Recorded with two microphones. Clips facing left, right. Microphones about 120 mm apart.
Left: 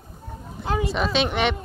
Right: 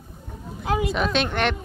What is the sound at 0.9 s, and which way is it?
Speech, centre (ahead or behind).